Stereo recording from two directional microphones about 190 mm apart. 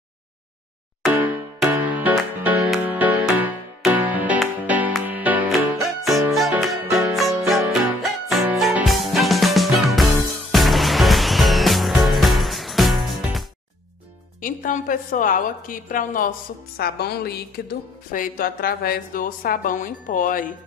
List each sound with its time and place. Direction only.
1.0 s music: 10° right (ahead or behind)
14.4 s a woman's voice: 45° left (ahead or behind)